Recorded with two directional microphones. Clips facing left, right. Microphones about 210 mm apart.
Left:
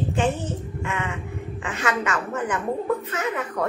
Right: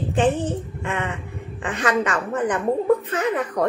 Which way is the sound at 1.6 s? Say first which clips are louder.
Right 4 dB; 35° right (ahead or behind).